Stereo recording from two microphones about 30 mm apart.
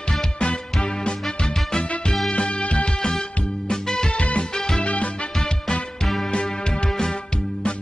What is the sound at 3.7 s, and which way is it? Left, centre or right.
Music, left.